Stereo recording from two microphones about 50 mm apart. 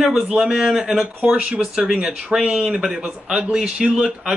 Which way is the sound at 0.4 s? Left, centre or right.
Centre.